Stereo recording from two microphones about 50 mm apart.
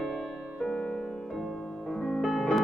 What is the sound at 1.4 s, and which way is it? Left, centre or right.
Music, centre.